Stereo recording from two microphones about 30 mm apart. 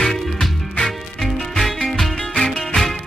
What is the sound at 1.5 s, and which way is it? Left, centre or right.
Music, centre.